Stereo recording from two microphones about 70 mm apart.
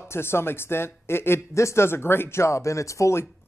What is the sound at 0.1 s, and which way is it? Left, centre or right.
Speech, left.